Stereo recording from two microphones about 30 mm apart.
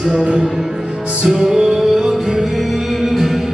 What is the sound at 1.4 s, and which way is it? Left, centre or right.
Music, right.